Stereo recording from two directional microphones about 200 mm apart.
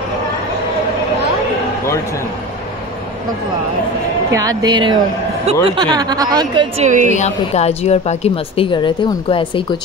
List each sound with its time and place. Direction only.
4.3 s speech: 15° right (ahead or behind)
7.2 s a woman's voice: 35° left (ahead or behind)